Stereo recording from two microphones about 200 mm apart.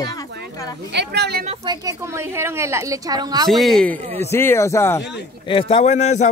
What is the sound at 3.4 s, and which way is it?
A man's voice, centre (ahead or behind).